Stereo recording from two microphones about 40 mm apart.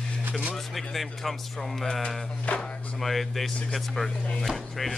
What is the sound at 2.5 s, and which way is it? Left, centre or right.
Speech, left.